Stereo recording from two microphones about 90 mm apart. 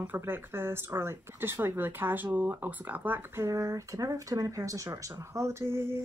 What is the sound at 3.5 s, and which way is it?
Speech, 35° right (ahead or behind).